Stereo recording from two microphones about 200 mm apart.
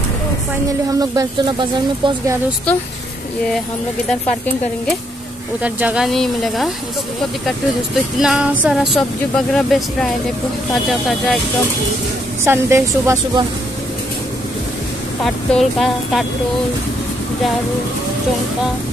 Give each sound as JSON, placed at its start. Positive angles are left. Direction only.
{"t": 0.9, "sound": "speech", "side_deg": -20}
{"t": 5.6, "sound": "speech", "side_deg": -5}
{"t": 8.2, "sound": "speech", "side_deg": -5}
{"t": 12.4, "sound": "a woman's voice", "side_deg": -15}
{"t": 15.2, "sound": "speech", "side_deg": 0}